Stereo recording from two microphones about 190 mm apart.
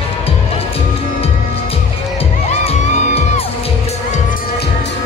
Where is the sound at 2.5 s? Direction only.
35° left (ahead or behind).